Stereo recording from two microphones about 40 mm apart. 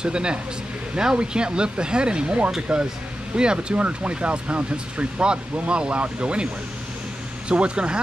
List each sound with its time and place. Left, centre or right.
0.0 s speech: right
3.7 s speech: right